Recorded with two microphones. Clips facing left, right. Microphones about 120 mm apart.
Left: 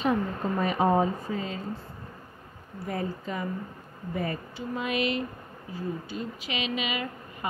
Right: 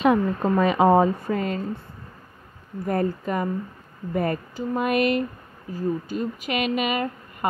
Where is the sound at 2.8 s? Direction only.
55° right (ahead or behind).